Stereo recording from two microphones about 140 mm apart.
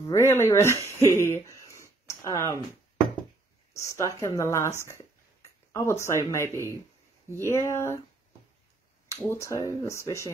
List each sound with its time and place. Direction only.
0.1 s speech: 20° left (ahead or behind)
1.0 s a sound: 20° left (ahead or behind)
3.7 s speech: 20° left (ahead or behind)
6.5 s speech: 20° right (ahead or behind)
7.3 s speech: 20° left (ahead or behind)
9.1 s speech: 20° left (ahead or behind)